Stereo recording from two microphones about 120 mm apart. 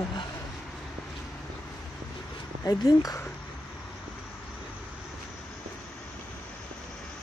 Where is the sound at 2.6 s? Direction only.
30° left (ahead or behind).